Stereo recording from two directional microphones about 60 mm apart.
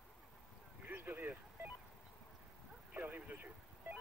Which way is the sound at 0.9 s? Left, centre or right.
Right.